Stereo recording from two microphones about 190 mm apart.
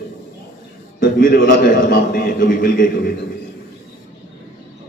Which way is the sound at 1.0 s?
50° left (ahead or behind).